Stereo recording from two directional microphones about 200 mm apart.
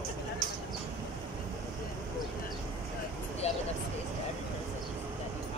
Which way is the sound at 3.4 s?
30° left (ahead or behind).